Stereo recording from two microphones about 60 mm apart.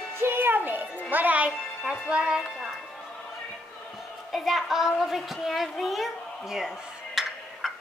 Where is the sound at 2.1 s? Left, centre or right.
Centre.